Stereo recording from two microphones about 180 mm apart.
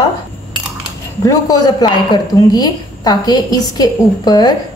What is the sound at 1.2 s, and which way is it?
A woman's voice, 20° left (ahead or behind).